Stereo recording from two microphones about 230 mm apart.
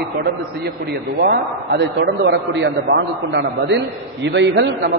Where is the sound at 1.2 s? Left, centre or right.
Right.